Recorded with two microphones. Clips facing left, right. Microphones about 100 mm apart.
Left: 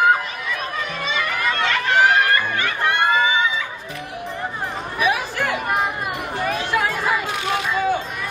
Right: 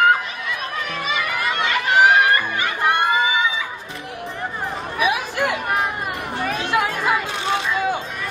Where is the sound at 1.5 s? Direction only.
15° right (ahead or behind).